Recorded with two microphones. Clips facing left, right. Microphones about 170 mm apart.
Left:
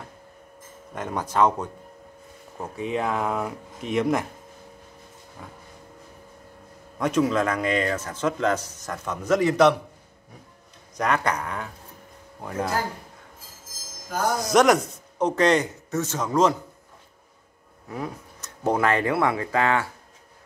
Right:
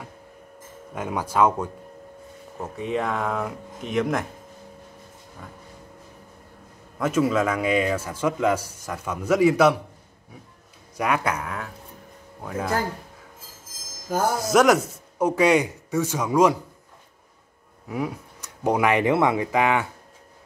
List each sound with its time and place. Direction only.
0.9 s a man's voice: 10° right (ahead or behind)
7.0 s a man's voice: 5° right (ahead or behind)
11.0 s speech: 10° right (ahead or behind)
14.3 s a man's voice: 5° right (ahead or behind)
17.8 s speech: 10° right (ahead or behind)